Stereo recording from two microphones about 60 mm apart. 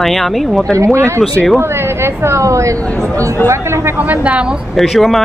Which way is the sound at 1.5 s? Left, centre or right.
Right.